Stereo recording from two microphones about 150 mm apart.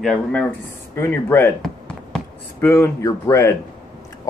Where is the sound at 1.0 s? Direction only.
15° left (ahead or behind).